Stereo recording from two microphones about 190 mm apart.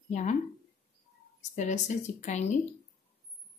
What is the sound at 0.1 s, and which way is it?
Speech, 40° left (ahead or behind).